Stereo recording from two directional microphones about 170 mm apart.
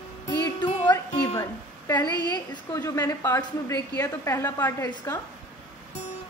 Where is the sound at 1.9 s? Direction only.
25° left (ahead or behind).